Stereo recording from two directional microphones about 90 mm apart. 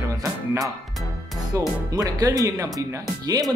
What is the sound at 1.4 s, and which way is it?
Speech, 45° right (ahead or behind).